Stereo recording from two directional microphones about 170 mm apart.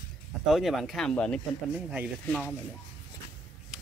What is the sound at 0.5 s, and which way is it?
Speech, centre (ahead or behind).